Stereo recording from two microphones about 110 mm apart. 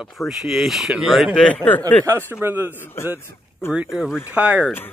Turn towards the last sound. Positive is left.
turn(degrees=-10)  # may be behind; listen again after turning